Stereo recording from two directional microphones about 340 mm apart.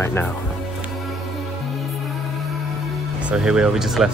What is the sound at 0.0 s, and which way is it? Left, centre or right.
Speech, centre.